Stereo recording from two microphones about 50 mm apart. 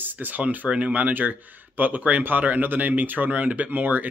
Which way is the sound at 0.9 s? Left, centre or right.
Right.